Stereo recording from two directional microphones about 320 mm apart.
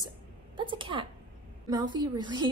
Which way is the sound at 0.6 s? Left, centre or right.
Centre.